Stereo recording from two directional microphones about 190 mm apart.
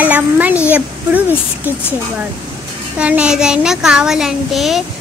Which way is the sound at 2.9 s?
5° right (ahead or behind).